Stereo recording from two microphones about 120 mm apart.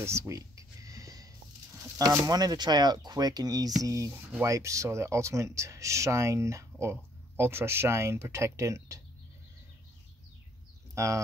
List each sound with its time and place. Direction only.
0.0 s a sound: 25° right (ahead or behind)
2.0 s speech: 30° right (ahead or behind)
11.0 s speech: 25° right (ahead or behind)